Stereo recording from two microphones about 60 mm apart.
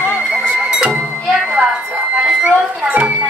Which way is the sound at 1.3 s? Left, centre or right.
Centre.